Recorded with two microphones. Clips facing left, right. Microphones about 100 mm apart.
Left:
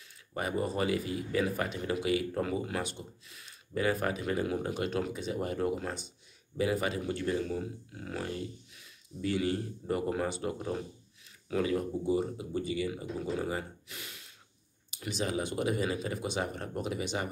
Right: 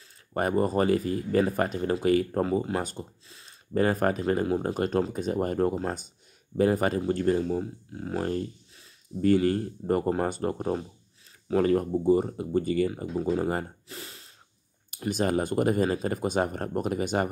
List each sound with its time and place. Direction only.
0.3 s speech: 50° right (ahead or behind)
2.4 s speech: 30° right (ahead or behind)
3.7 s speech: 45° right (ahead or behind)
14.9 s speech: 50° right (ahead or behind)